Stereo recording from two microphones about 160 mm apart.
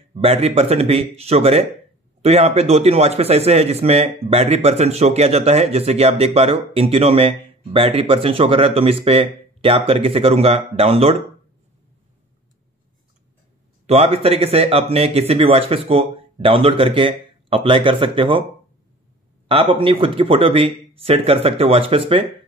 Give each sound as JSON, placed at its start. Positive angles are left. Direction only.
{"t": 0.1, "sound": "speech", "side_deg": -40}
{"t": 13.8, "sound": "speech", "side_deg": -40}
{"t": 19.4, "sound": "speech", "side_deg": -35}